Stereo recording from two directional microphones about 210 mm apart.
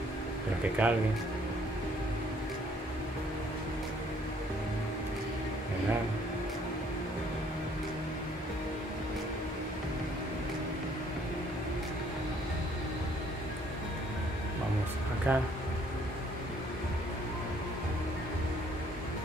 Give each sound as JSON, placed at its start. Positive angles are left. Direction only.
{"t": 0.8, "sound": "speech", "side_deg": -5}
{"t": 15.3, "sound": "speech", "side_deg": -10}